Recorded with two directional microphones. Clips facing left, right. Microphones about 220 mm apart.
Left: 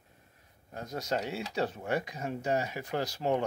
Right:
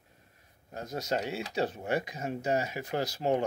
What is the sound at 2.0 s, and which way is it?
Speech, 20° right (ahead or behind).